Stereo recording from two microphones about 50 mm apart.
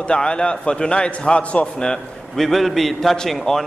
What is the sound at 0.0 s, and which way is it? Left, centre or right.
A man's voice, centre.